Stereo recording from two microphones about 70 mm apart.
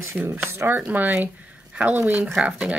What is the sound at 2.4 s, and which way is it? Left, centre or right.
Speech, centre.